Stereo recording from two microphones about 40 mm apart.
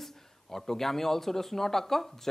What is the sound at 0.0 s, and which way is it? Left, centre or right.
A man's voice, centre.